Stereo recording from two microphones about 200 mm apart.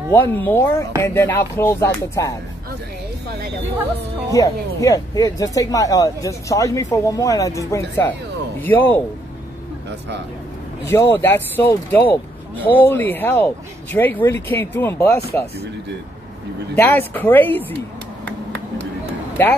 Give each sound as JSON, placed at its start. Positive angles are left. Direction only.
{"t": 0.1, "sound": "speech", "side_deg": 10}
{"t": 4.3, "sound": "speech", "side_deg": 15}
{"t": 10.9, "sound": "speech", "side_deg": 10}
{"t": 16.7, "sound": "speech", "side_deg": 10}